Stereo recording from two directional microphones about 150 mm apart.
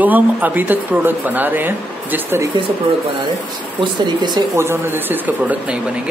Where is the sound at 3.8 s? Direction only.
30° right (ahead or behind).